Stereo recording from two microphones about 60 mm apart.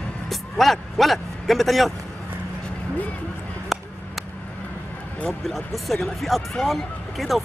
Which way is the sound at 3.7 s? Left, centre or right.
Centre.